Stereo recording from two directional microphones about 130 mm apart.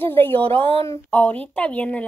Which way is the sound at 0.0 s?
15° left (ahead or behind).